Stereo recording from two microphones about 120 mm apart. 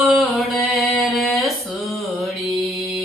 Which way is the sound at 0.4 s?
Centre (ahead or behind).